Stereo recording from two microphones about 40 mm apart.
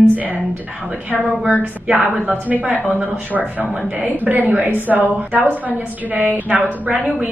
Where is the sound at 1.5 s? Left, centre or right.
Right.